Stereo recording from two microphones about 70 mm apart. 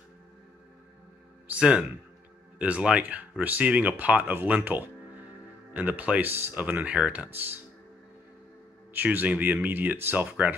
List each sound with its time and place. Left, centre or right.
1.5 s speech: centre
8.9 s speech: right